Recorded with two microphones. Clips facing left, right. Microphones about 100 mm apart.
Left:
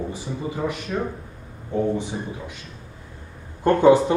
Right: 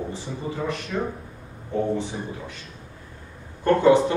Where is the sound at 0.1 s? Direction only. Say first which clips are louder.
Left 2 dB; 15° left (ahead or behind).